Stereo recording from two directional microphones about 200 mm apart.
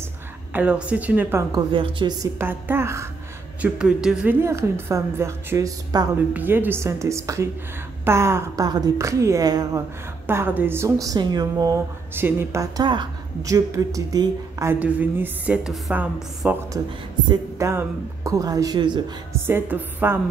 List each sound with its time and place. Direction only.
0.5 s a woman's voice: 5° right (ahead or behind)
1.7 s a woman's voice: 25° right (ahead or behind)
2.3 s a woman's voice: 10° right (ahead or behind)
19.4 s a woman's voice: 10° right (ahead or behind)